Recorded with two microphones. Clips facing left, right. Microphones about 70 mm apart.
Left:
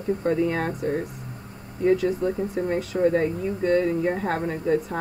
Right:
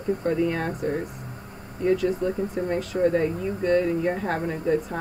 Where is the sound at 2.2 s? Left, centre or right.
Centre.